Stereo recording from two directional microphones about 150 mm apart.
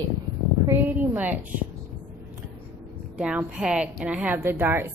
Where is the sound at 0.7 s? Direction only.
10° right (ahead or behind).